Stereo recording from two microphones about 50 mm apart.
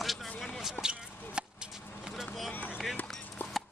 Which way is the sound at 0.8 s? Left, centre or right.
Centre.